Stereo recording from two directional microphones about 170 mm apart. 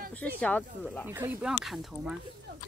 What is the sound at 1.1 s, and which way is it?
Speech, 10° right (ahead or behind).